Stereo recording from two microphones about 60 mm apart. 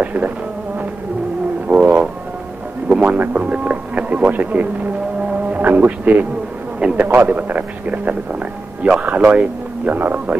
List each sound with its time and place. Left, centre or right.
0.0 s speech: right
1.7 s music: right
2.9 s a sound: centre
3.2 s speech: right